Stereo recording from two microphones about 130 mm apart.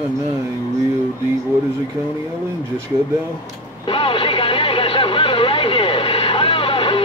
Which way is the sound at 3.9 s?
40° left (ahead or behind).